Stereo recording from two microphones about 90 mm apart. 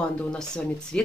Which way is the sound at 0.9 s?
10° left (ahead or behind).